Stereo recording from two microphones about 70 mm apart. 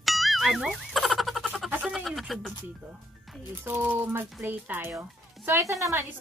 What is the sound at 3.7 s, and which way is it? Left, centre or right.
Speech, right.